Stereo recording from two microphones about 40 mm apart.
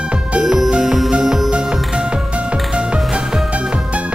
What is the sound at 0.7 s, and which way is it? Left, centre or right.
Music, centre.